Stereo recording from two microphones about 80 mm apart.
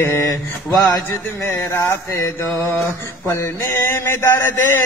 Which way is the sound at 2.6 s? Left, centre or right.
Left.